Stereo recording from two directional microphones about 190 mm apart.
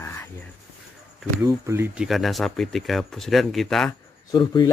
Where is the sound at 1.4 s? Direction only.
15° right (ahead or behind).